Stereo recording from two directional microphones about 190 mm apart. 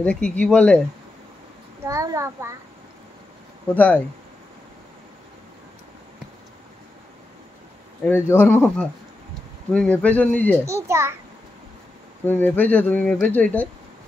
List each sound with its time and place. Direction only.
0.0 s speech: 5° left (ahead or behind)
1.9 s a child's voice: 15° right (ahead or behind)
3.6 s speech: 10° left (ahead or behind)
8.0 s speech: 10° left (ahead or behind)
10.6 s a child's voice: 15° right (ahead or behind)
12.3 s speech: 10° left (ahead or behind)